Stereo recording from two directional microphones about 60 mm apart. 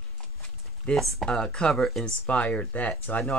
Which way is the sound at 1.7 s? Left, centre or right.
Centre.